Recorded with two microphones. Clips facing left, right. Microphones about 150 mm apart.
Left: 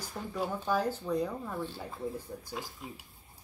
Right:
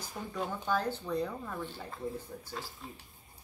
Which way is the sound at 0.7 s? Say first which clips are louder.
Left 2 dB; 10° left (ahead or behind).